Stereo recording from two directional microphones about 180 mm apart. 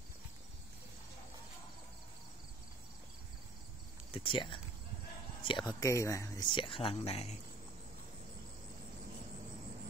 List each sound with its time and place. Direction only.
4.1 s speech: 30° left (ahead or behind)